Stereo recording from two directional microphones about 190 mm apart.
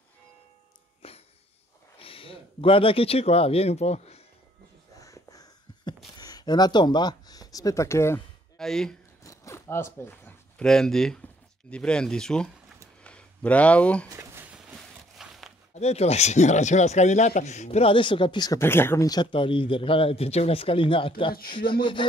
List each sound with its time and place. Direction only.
1.0 s wheeze: 30° left (ahead or behind)
2.0 s speech: 30° left (ahead or behind)
4.9 s a sound: 15° left (ahead or behind)
6.1 s speech: 20° left (ahead or behind)
8.5 s speech: 5° left (ahead or behind)
9.2 s zipper: 15° left (ahead or behind)
11.7 s speech: 5° left (ahead or behind)
13.0 s a sound: 5° left (ahead or behind)
14.0 s a sound: 15° right (ahead or behind)
15.1 s walk: centre (ahead or behind)
15.7 s speech: 35° left (ahead or behind)